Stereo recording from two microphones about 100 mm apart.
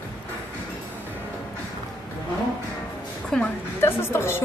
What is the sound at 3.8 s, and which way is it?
Speech, 25° left (ahead or behind).